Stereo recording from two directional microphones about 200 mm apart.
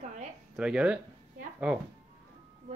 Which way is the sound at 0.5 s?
5° right (ahead or behind).